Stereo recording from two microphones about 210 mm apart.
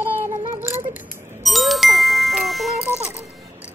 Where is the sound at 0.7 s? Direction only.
10° right (ahead or behind).